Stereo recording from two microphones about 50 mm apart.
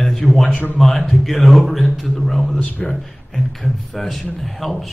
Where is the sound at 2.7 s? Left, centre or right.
Left.